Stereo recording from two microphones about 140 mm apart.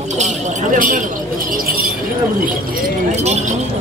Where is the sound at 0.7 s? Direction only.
70° right (ahead or behind).